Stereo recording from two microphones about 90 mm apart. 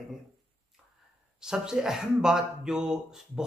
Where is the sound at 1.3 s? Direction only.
5° right (ahead or behind).